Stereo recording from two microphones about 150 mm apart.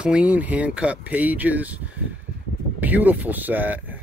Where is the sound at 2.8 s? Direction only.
10° right (ahead or behind).